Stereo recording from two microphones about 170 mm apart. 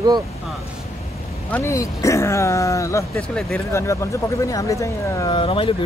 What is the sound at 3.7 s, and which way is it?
Speech, 15° left (ahead or behind).